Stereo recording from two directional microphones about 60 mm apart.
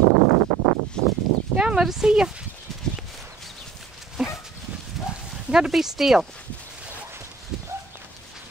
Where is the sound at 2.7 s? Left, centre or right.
Centre.